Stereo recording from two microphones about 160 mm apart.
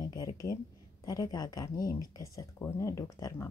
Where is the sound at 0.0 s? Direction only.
20° left (ahead or behind).